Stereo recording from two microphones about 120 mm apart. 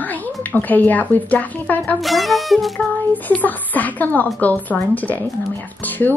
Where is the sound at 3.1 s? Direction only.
15° left (ahead or behind).